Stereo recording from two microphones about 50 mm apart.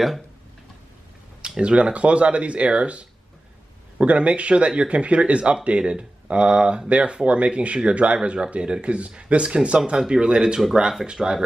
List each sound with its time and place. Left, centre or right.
1.6 s speech: right
11.1 s speech: centre